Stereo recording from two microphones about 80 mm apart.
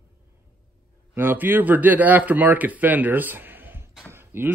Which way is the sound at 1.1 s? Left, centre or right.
Right.